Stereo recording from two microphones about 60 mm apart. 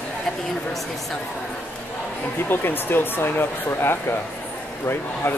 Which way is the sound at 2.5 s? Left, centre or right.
Left.